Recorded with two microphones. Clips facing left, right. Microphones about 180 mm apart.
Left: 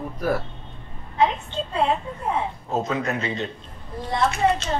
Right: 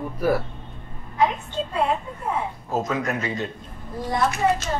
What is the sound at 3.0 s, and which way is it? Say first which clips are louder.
Speech: even; 25° left (ahead or behind).